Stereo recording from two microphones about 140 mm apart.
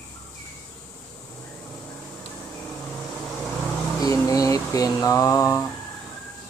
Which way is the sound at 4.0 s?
25° left (ahead or behind).